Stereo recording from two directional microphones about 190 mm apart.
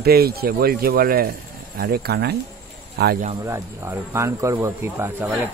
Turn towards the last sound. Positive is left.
turn(degrees=-10)  # may be behind; listen again after turning